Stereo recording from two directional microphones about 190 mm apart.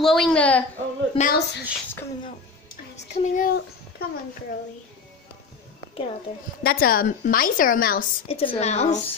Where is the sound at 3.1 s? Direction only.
40° left (ahead or behind).